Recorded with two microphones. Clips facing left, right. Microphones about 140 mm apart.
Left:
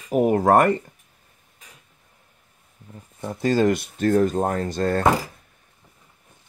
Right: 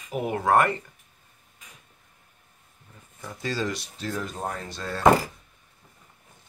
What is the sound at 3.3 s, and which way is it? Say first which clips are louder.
Speech: left 10 dB; 45° left (ahead or behind).